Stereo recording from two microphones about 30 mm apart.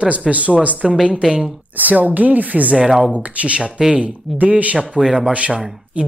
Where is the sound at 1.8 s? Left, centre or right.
Right.